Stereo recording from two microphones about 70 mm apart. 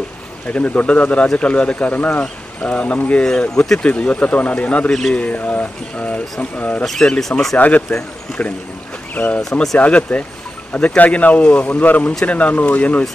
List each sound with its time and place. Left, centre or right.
0.5 s speech: left
4.9 s a man's voice: centre
5.2 s speech: left
6.8 s speech: centre
7.5 s speech: left
9.4 s speech: centre
9.8 s speech: centre